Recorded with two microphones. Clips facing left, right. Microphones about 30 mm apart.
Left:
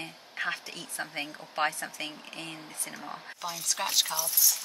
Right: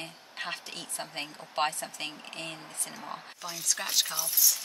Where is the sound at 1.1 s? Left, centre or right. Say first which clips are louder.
Even; centre.